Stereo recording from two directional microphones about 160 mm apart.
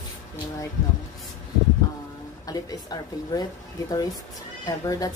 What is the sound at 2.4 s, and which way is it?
A woman's voice, 25° left (ahead or behind).